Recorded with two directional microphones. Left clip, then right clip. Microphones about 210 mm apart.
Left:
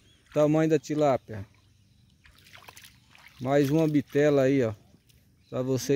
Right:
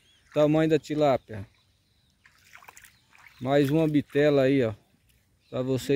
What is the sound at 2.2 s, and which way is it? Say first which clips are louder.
Trickle: even; 55° left (ahead or behind).